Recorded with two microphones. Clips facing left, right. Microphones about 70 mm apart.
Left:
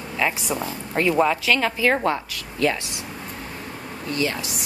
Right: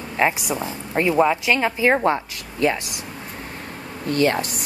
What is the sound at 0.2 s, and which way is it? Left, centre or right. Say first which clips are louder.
Speech: right 4 dB; right.